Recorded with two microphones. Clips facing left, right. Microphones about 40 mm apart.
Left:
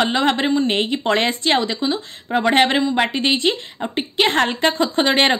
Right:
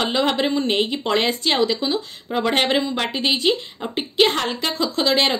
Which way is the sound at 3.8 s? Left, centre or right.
Centre.